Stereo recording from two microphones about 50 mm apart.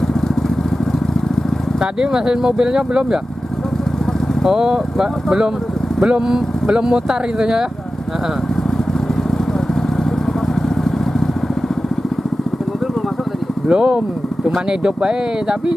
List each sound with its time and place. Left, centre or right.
2.0 s speech: centre
4.5 s speech: centre
13.7 s speech: right